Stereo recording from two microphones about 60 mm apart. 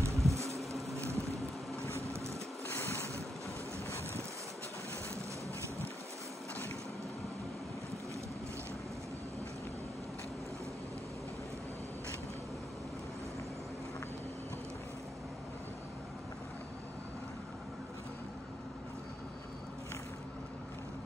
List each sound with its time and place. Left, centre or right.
0.0 s a sound: right
0.9 s vehicle: right
2.7 s boat: left